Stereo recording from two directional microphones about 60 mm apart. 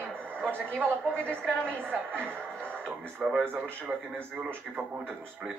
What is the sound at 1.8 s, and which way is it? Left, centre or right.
Speech, right.